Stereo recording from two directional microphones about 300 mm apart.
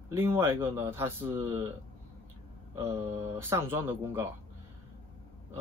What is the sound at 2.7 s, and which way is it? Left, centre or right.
Speech, centre.